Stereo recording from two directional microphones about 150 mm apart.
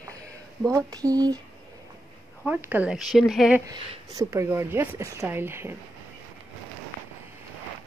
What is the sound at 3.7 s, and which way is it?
A woman's voice, 20° right (ahead or behind).